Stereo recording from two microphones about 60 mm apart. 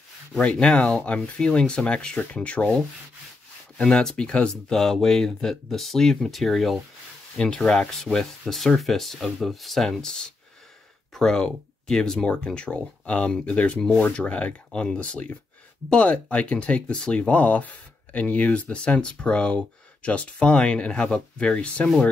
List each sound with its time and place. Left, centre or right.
0.4 s speech: centre
3.7 s speech: centre
7.3 s speech: centre
7.9 s speech: centre